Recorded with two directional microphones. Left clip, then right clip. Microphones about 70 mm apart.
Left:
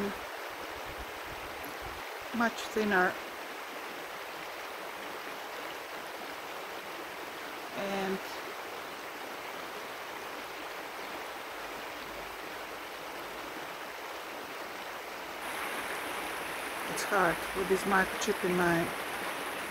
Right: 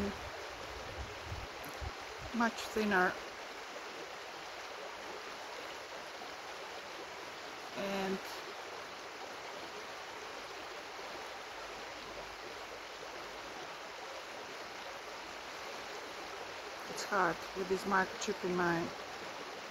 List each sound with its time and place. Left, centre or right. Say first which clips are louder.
2.3 s speech: left 3 dB; left
7.8 s stream: left 3 dB; left
16.9 s speech: left 5 dB; left